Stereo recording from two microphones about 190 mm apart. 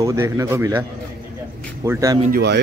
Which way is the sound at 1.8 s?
15° right (ahead or behind).